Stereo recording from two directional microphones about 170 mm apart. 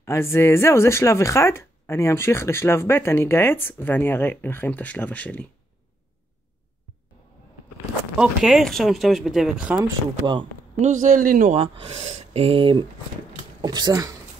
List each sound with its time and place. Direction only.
0.0 s speech: 15° left (ahead or behind)
8.2 s speech: centre (ahead or behind)
10.8 s speech: 50° right (ahead or behind)
11.5 s speech: 35° right (ahead or behind)